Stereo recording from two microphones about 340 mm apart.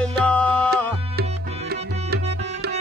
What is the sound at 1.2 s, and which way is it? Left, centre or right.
Tabla, right.